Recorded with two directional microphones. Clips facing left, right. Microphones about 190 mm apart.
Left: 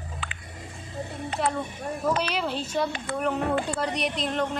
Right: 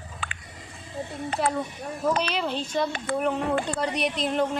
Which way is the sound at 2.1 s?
10° left (ahead or behind).